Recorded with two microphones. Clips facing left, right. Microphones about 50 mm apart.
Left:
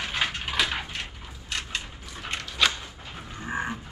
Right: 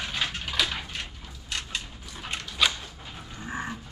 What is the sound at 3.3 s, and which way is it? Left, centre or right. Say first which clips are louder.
Grunt: left 4 dB; left.